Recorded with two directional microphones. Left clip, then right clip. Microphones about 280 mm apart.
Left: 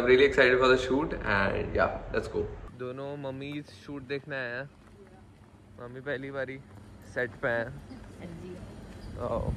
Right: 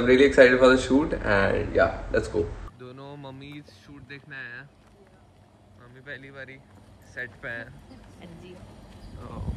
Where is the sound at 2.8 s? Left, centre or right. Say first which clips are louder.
Left 7 dB; centre.